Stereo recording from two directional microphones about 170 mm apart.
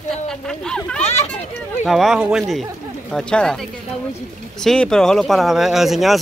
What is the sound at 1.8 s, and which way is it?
Speech, centre (ahead or behind).